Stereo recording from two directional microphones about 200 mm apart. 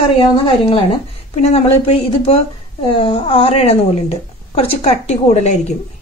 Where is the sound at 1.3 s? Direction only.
30° left (ahead or behind).